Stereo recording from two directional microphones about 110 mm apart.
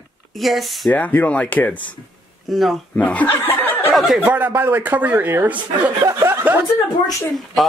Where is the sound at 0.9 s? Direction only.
15° left (ahead or behind).